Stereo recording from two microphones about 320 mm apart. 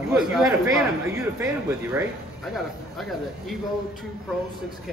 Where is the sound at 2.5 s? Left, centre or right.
Centre.